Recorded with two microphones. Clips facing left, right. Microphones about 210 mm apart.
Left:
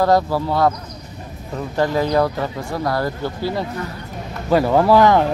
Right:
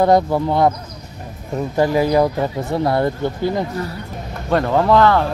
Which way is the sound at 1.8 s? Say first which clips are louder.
Right 2 dB; 10° right (ahead or behind).